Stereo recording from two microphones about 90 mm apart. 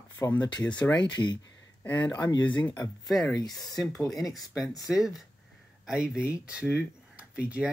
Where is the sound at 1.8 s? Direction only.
20° left (ahead or behind).